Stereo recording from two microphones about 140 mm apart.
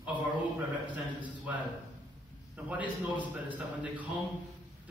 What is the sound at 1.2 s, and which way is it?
A man's voice, 10° right (ahead or behind).